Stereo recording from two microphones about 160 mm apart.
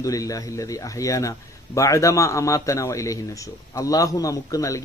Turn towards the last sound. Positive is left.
turn(degrees=20)  # may be behind; listen again after turning